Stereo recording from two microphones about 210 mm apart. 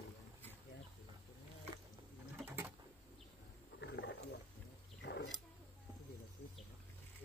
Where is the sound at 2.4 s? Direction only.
10° right (ahead or behind).